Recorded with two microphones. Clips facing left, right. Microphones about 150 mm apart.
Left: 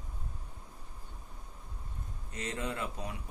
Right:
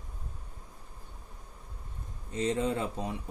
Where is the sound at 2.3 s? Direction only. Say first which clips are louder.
Right 8 dB; 30° right (ahead or behind).